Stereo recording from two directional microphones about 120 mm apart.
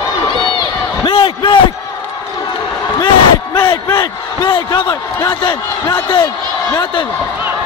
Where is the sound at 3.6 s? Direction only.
35° left (ahead or behind).